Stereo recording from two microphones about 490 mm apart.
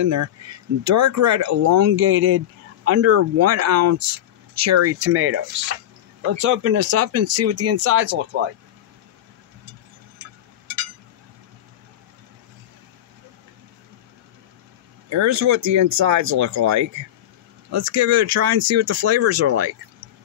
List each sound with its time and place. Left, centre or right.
0.0 s speech: right
15.0 s speech: right